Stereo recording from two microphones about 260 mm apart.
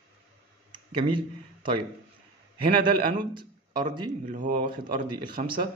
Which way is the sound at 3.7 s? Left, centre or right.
Right.